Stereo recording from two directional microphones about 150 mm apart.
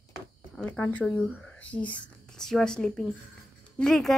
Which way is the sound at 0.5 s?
10° left (ahead or behind).